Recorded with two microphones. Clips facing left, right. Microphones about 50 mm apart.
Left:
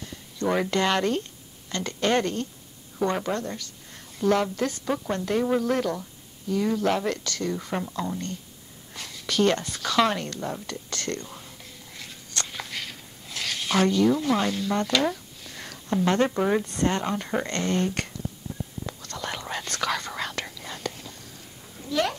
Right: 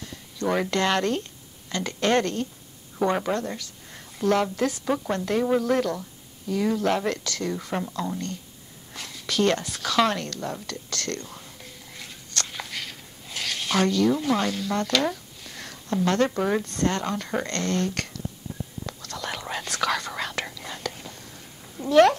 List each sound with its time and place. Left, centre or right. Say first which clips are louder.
0.4 s a woman's voice: even; centre
12.4 s a sound: even; centre
14.0 s a woman's voice: even; centre
15.0 s a sound: even; centre
15.9 s speech: even; centre
18.9 s whispering: right 1 dB; centre
21.8 s cat: right 9 dB; centre